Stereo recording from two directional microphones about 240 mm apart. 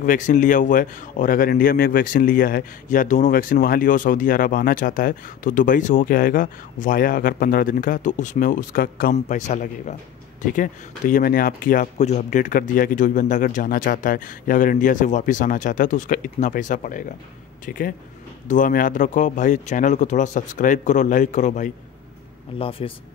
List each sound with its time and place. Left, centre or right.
0.0 s speech: left